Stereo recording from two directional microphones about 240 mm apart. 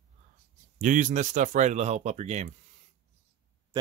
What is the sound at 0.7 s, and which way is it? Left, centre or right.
Speech, right.